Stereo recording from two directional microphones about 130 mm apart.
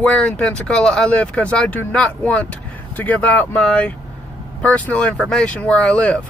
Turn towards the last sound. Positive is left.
turn(degrees=10)  # may be behind; listen again after turning